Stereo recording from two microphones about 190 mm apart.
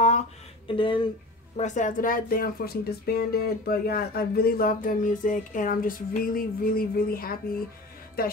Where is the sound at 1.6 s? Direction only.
40° left (ahead or behind).